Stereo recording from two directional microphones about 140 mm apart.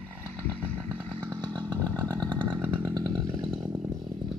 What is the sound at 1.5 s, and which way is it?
Chainsaw, 30° right (ahead or behind).